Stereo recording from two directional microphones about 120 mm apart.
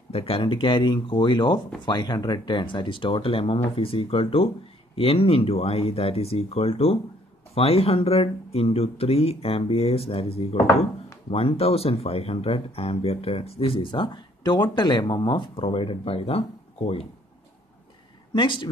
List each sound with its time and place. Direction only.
0.1 s speech: 50° left (ahead or behind)
18.3 s speech: 45° left (ahead or behind)